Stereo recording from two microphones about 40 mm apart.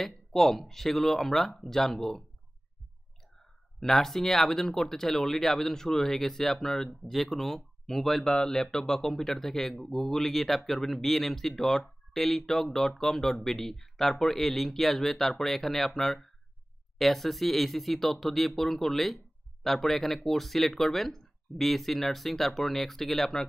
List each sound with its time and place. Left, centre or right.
0.0 s speech: centre
3.8 s speech: centre
8.4 s speech: centre